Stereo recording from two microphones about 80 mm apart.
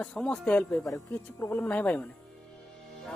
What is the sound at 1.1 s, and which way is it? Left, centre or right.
Speech, left.